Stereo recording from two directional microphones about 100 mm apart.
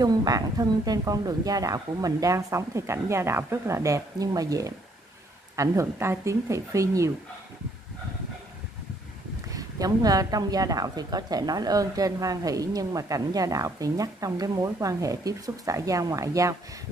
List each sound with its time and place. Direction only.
0.0 s a woman's voice: 40° right (ahead or behind)
9.5 s a woman's voice: 35° right (ahead or behind)